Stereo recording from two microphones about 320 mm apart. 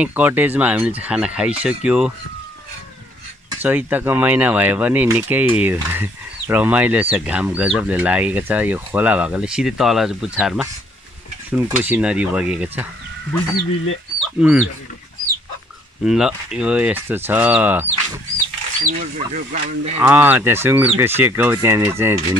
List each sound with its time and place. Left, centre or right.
0.0 s speech: centre
3.4 s speech: centre
14.4 s speech: centre
16.0 s speech: centre
18.8 s speech: right
20.0 s speech: centre